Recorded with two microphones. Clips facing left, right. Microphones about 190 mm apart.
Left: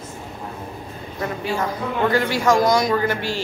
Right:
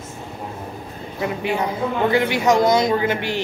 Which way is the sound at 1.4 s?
20° right (ahead or behind).